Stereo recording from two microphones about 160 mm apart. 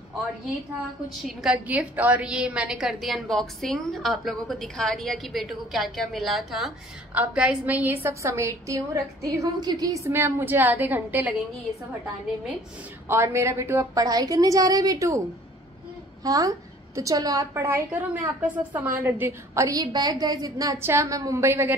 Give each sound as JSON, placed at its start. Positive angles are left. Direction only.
{"t": 1.2, "sound": "a woman's voice", "side_deg": -5}
{"t": 13.1, "sound": "a woman's voice", "side_deg": -15}
{"t": 16.3, "sound": "a woman's voice", "side_deg": -20}